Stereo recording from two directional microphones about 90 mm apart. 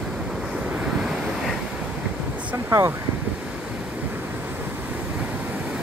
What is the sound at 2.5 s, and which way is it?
Speech, 30° right (ahead or behind).